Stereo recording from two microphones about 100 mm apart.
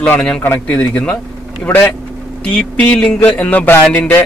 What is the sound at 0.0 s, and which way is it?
A man's voice, 10° left (ahead or behind).